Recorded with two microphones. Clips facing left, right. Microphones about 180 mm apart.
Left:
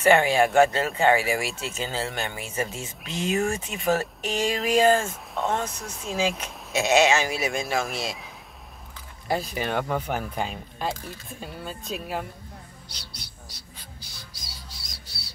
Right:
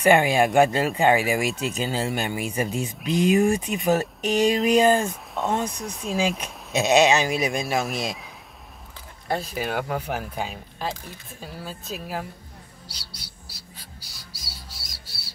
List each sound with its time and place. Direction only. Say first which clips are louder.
0.0 s speech: right 1 dB; 15° right (ahead or behind)
5.1 s speech: right 1 dB; centre (ahead or behind)
5.6 s speech: right 3 dB; 15° right (ahead or behind)
9.3 s speech: even; centre (ahead or behind)
12.8 s bird: even; 10° right (ahead or behind)